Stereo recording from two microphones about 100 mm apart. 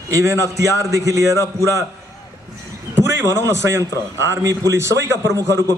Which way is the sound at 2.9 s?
30° right (ahead or behind).